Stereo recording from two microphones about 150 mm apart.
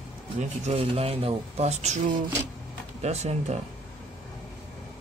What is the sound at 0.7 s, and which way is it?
Speech, 40° right (ahead or behind).